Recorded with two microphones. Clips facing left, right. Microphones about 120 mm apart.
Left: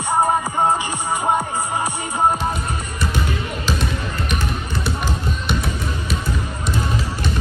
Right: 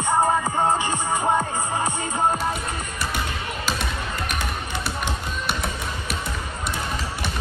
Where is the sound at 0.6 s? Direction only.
15° left (ahead or behind).